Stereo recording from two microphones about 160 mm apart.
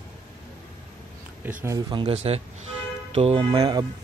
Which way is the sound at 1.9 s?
40° right (ahead or behind).